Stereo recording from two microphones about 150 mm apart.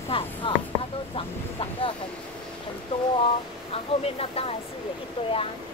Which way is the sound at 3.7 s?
40° left (ahead or behind).